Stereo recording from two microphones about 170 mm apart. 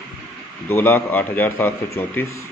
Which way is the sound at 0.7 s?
10° left (ahead or behind).